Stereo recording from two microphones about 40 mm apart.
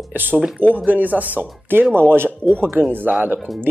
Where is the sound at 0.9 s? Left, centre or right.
Right.